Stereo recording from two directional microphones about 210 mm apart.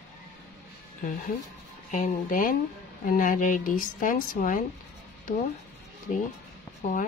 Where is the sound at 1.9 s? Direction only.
35° left (ahead or behind).